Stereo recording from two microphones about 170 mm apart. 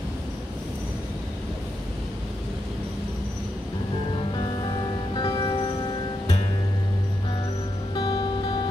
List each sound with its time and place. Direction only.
4.4 s music: 25° left (ahead or behind)
7.9 s music: 25° left (ahead or behind)